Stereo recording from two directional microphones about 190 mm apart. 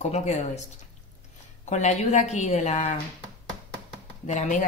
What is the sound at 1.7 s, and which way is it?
Speech, 40° left (ahead or behind).